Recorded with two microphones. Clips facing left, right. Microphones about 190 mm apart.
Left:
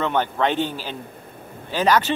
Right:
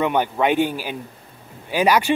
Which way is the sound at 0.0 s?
10° right (ahead or behind).